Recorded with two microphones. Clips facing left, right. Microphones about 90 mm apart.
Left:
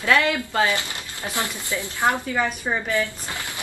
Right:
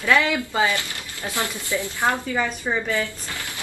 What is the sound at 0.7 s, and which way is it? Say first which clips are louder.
A woman's voice: even; 20° left (ahead or behind).